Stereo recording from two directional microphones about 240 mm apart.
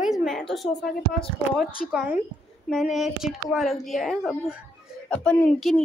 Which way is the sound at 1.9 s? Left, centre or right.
Centre.